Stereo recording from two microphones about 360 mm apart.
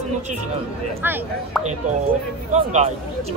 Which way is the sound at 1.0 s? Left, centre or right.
Centre.